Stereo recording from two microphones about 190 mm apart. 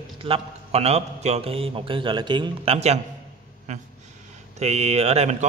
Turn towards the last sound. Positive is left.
turn(degrees=-35)  # may be behind; listen again after turning